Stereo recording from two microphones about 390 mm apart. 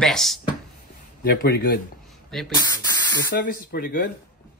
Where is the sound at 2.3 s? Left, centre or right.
Centre.